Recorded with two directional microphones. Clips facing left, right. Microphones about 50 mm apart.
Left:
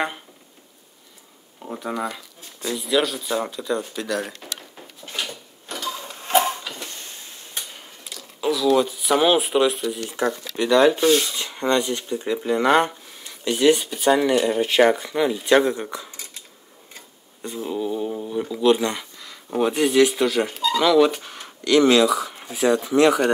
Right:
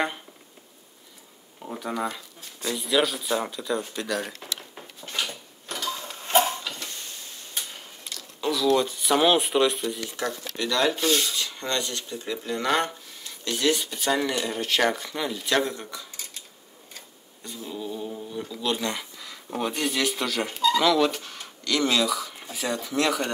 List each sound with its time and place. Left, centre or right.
1.6 s speech: centre
5.9 s tick-tock: centre
6.5 s a sound: centre
8.0 s a sound: centre
10.0 s speech: left
11.2 s cutlery: left
17.4 s a sound: left
18.3 s speech: centre
18.7 s speech: centre
21.6 s speech: left
22.4 s speech: centre
22.9 s speech: left